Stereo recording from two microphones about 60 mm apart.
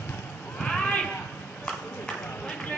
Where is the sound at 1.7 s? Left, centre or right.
Centre.